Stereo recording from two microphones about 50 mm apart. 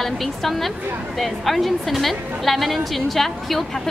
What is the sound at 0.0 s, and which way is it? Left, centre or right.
A woman's voice, centre.